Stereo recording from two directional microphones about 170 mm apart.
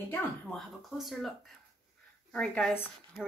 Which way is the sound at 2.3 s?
5° left (ahead or behind).